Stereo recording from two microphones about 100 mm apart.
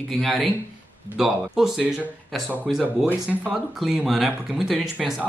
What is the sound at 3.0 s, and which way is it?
Speech, 15° right (ahead or behind).